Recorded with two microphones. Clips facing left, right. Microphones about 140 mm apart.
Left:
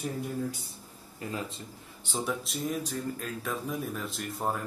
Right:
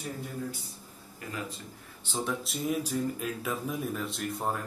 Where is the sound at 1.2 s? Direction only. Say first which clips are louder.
Left 4 dB; 30° left (ahead or behind).